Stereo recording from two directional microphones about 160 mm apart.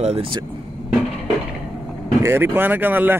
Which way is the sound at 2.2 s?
15° right (ahead or behind).